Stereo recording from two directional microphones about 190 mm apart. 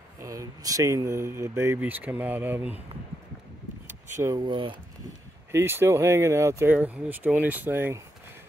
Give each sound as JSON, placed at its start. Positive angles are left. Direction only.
{"t": 0.2, "sound": "speech", "side_deg": -15}
{"t": 4.2, "sound": "speech", "side_deg": -20}
{"t": 5.5, "sound": "speech", "side_deg": -10}